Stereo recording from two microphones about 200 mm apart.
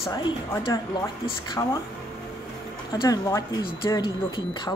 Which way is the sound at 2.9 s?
20° left (ahead or behind).